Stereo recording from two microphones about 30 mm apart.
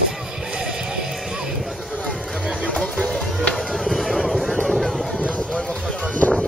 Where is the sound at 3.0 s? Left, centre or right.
Centre.